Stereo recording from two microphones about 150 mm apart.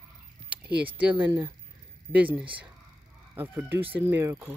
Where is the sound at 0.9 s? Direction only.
10° right (ahead or behind).